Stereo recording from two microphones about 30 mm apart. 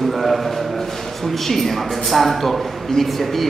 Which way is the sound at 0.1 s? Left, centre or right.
Centre.